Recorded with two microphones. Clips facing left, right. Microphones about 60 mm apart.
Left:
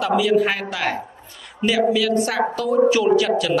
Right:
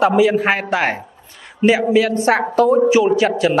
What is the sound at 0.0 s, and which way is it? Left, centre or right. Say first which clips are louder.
A man's voice: right 4 dB; right.